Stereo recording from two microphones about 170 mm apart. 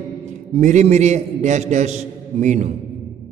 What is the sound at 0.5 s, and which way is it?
A man's voice, 45° right (ahead or behind).